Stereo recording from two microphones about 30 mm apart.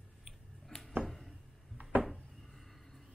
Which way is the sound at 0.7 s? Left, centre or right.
Left.